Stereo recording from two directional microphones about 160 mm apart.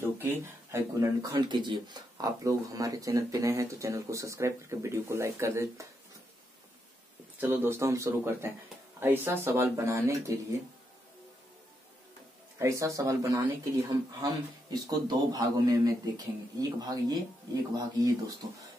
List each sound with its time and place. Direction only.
0.0 s speech: 15° right (ahead or behind)
7.3 s speech: 10° right (ahead or behind)
12.5 s speech: 20° right (ahead or behind)